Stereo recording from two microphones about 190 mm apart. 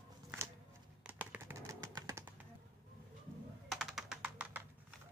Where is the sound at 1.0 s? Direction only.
10° right (ahead or behind).